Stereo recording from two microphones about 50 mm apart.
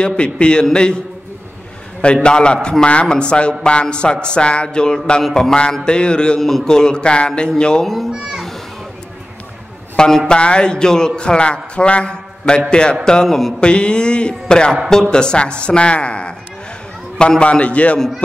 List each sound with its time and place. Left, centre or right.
0.0 s a man's voice: centre
2.2 s a man's voice: centre
7.8 s a child's voice: centre
8.1 s a child's voice: centre
9.9 s a man's voice: centre
13.6 s a man's voice: centre
17.4 s a man's voice: left